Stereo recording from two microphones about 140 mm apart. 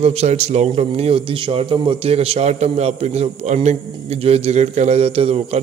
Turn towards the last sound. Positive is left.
turn(degrees=-45)  # may be behind; listen again after turning